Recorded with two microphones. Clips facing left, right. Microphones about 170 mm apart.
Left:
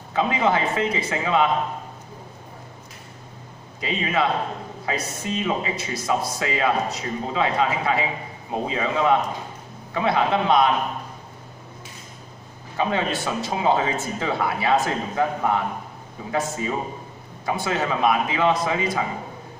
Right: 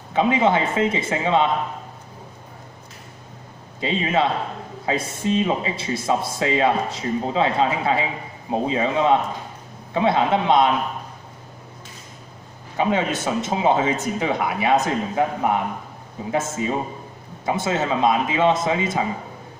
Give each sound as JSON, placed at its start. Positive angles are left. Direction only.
{"t": 0.1, "sound": "a man's voice", "side_deg": -20}
{"t": 3.8, "sound": "a man's voice", "side_deg": -25}
{"t": 12.7, "sound": "a man's voice", "side_deg": -20}